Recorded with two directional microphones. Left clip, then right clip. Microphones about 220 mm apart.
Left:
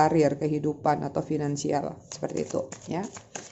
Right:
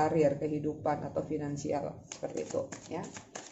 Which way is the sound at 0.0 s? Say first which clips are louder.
Left 6 dB; 45° left (ahead or behind).